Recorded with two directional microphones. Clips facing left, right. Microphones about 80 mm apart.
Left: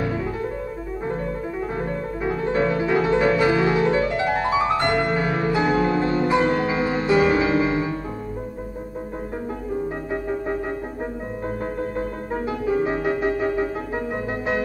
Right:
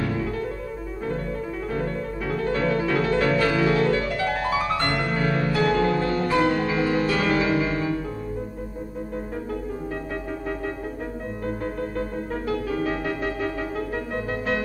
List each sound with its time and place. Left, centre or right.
1.7 s music: left
10.1 s music: left
12.3 s music: left